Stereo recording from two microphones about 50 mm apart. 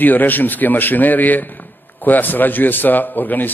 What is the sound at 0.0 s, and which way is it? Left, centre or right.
A man's voice, left.